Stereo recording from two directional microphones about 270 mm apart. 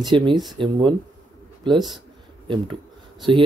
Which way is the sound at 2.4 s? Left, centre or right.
Centre.